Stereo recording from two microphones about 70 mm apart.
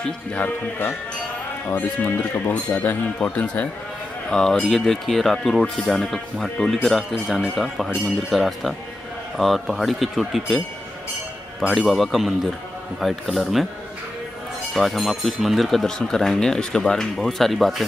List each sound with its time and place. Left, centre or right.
0.4 s speech: left
4.3 s speech: centre
11.9 s speech: centre
14.7 s speech: centre